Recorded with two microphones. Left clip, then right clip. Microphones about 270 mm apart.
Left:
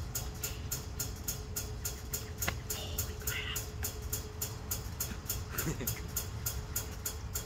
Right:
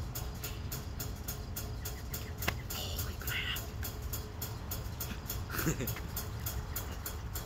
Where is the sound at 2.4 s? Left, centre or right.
Right.